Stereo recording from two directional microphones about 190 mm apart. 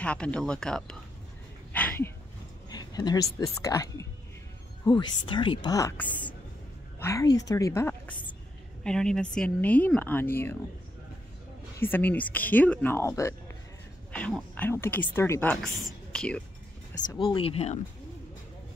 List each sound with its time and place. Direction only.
0.0 s speech: 5° left (ahead or behind)
1.7 s a sound: 10° left (ahead or behind)
2.7 s a woman's voice: 20° left (ahead or behind)
8.8 s speech: 5° left (ahead or behind)
11.8 s speech: 10° left (ahead or behind)
17.0 s a woman's voice: 25° left (ahead or behind)